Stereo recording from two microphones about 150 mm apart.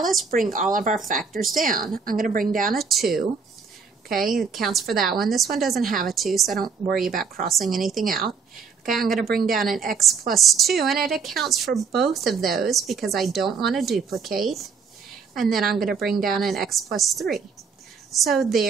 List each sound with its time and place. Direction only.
0.0 s a woman's voice: centre (ahead or behind)
0.3 s speech: 65° right (ahead or behind)
1.2 s a woman's voice: centre (ahead or behind)
1.6 s a woman's voice: 70° right (ahead or behind)
2.7 s a woman's voice: centre (ahead or behind)